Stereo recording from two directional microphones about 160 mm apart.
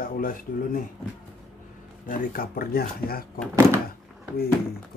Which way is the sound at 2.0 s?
60° left (ahead or behind).